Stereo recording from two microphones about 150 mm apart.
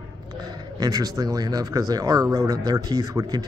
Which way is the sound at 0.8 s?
25° right (ahead or behind).